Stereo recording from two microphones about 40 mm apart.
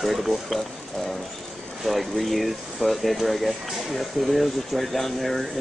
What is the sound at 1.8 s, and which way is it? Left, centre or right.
Speech, centre.